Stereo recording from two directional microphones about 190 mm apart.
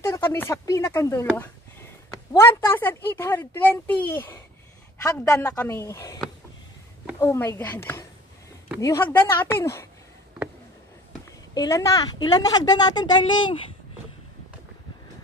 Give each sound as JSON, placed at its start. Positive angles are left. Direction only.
{"t": 0.0, "sound": "speech", "side_deg": 15}
{"t": 11.5, "sound": "a woman's voice", "side_deg": 20}